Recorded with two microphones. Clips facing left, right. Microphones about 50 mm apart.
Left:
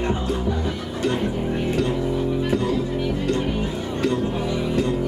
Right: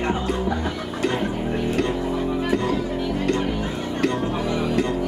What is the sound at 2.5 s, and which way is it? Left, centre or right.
Music, right.